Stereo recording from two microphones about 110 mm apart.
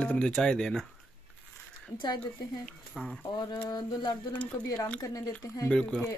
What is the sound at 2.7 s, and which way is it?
Speech, 5° left (ahead or behind).